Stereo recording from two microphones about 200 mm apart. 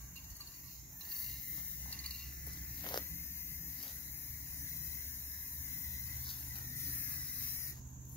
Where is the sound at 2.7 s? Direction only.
20° left (ahead or behind).